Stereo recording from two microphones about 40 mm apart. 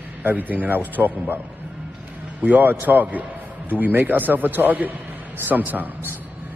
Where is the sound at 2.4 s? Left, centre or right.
Right.